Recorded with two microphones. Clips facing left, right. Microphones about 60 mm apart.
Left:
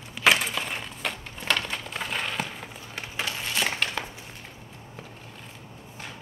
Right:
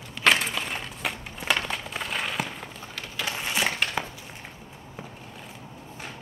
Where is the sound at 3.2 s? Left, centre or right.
Centre.